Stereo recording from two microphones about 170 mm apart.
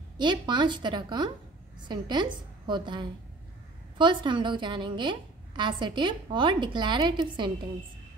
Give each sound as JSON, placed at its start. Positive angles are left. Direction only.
{"t": 0.2, "sound": "a woman's voice", "side_deg": -25}